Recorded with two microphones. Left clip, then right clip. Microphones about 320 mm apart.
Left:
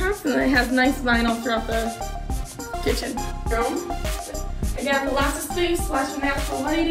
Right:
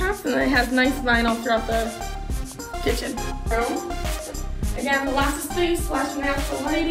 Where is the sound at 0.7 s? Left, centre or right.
Right.